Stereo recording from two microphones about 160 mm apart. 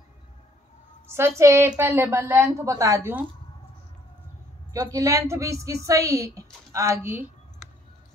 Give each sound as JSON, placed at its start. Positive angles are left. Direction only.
{"t": 1.1, "sound": "a woman's voice", "side_deg": -15}
{"t": 4.7, "sound": "a woman's voice", "side_deg": -20}